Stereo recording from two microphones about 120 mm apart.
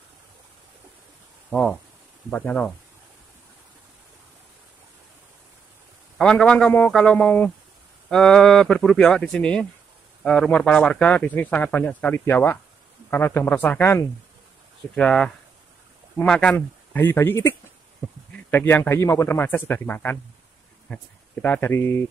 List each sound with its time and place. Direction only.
1.5 s speech: 5° left (ahead or behind)
6.1 s speech: 10° left (ahead or behind)
16.5 s speech: 20° left (ahead or behind)